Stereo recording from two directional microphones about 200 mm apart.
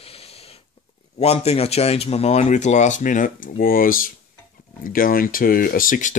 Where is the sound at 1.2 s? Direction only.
30° left (ahead or behind).